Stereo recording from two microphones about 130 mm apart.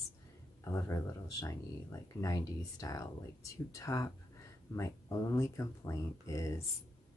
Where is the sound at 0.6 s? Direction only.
20° left (ahead or behind).